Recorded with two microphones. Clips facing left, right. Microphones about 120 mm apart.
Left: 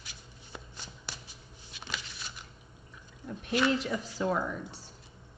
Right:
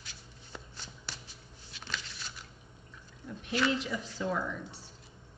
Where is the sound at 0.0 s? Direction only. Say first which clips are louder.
Left 1 dB; 15° left (ahead or behind).